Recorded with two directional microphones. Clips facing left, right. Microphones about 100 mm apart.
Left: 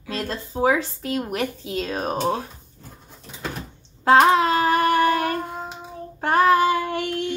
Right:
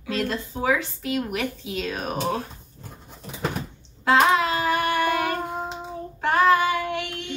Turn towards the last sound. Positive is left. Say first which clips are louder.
# left 4 dB
turn(degrees=45)  # may be behind; listen again after turning